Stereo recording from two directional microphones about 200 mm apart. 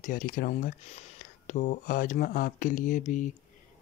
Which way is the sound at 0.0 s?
40° left (ahead or behind).